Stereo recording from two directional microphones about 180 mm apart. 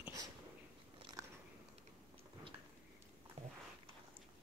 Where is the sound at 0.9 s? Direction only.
25° right (ahead or behind).